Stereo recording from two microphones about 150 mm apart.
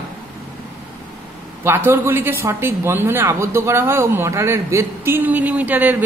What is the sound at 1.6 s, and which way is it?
A man's voice, 15° right (ahead or behind).